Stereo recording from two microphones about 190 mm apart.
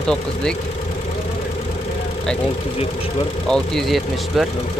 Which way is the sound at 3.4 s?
5° left (ahead or behind).